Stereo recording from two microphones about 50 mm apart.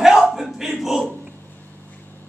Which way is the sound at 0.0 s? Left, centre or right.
Centre.